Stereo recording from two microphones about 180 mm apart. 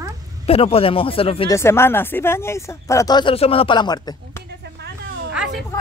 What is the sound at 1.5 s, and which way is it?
Speech, 15° left (ahead or behind).